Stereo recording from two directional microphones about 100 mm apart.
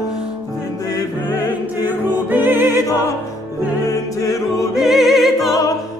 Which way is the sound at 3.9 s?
35° left (ahead or behind).